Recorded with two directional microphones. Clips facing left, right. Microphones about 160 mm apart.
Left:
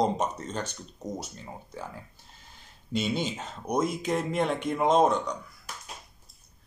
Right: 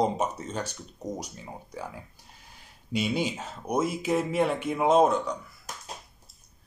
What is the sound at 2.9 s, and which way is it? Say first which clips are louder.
A man's voice: right 1 dB; 10° right (ahead or behind).